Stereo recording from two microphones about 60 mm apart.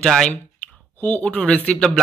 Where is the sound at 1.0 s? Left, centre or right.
Left.